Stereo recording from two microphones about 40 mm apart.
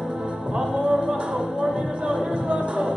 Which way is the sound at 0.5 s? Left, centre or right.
Right.